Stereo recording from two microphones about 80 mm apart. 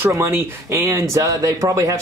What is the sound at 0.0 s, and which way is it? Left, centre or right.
Speech, right.